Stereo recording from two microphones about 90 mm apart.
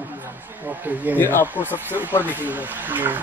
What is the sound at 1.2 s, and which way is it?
Speech, 20° left (ahead or behind).